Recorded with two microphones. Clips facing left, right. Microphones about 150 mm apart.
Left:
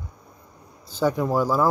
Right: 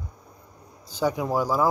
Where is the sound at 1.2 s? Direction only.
10° right (ahead or behind).